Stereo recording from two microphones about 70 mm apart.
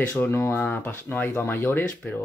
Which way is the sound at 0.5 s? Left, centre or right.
Left.